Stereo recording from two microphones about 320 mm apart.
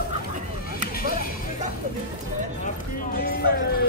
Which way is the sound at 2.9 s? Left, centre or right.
Left.